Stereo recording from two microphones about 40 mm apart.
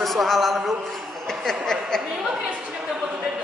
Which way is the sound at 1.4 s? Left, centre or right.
Centre.